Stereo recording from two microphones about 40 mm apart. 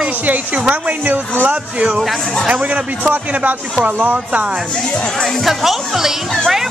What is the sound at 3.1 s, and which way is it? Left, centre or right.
Speech, right.